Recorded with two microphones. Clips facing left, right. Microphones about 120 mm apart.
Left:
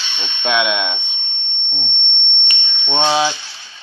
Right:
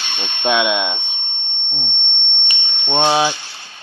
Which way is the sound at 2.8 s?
15° right (ahead or behind).